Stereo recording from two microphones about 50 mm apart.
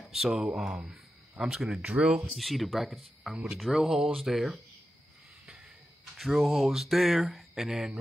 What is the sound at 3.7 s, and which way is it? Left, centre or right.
Speech, centre.